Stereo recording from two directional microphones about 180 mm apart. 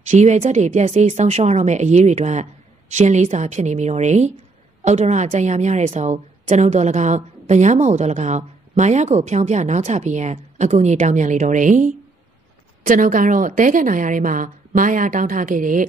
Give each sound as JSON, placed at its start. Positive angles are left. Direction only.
{"t": 0.1, "sound": "a woman's voice", "side_deg": -40}